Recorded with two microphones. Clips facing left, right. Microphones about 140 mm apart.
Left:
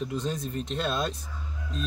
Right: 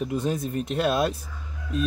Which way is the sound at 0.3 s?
55° right (ahead or behind).